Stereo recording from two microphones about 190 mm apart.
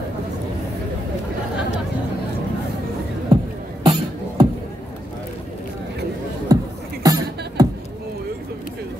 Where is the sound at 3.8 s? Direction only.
20° right (ahead or behind).